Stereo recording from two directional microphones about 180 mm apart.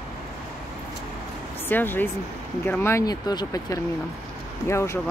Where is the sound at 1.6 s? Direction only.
10° left (ahead or behind).